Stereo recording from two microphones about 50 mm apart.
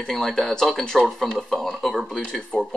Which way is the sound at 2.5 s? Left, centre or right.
Centre.